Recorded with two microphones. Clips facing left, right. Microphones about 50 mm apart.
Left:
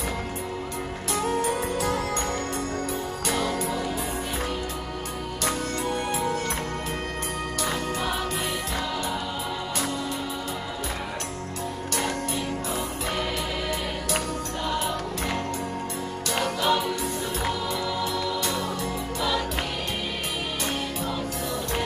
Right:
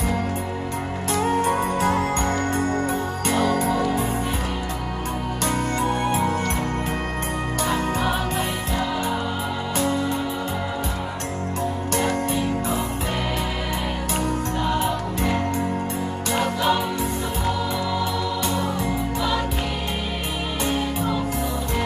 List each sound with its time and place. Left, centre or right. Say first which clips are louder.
1.1 s music: right 5 dB; right
5.4 s music: right 4 dB; right
7.6 s music: right 5 dB; right
14.6 s music: right 4 dB; right
16.3 s music: right 3 dB; right